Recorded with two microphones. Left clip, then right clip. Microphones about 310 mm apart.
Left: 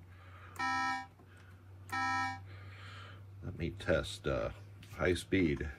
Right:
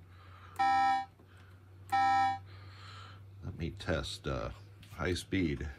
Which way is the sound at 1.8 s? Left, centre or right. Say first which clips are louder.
Right 7 dB; centre.